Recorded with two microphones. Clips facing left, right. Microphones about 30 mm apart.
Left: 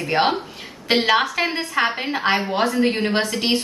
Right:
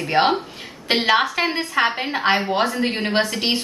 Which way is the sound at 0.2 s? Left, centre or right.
Centre.